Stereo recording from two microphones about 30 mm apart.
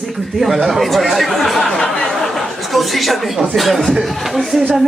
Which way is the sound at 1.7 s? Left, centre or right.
Centre.